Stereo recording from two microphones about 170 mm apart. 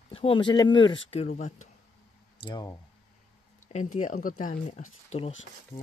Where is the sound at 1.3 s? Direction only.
45° left (ahead or behind).